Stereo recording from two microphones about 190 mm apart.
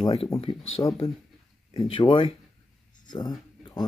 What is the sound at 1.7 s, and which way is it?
Speech, 25° left (ahead or behind).